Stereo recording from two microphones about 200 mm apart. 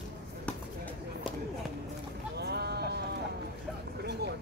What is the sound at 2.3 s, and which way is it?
Sheep, 55° right (ahead or behind).